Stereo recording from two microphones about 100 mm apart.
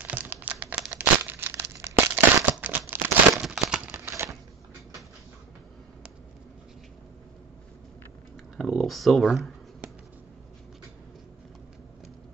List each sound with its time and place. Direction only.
0.0 s crumpling: 15° right (ahead or behind)
3.4 s crumpling: 5° right (ahead or behind)
3.9 s a sound: 25° right (ahead or behind)
8.5 s speech: centre (ahead or behind)